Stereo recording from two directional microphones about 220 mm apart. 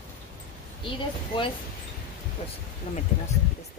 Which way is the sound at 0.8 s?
25° left (ahead or behind).